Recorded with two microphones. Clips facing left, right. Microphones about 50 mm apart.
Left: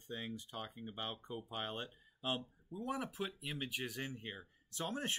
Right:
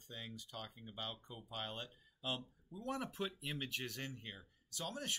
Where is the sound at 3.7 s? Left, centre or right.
Centre; by 5.2 s left.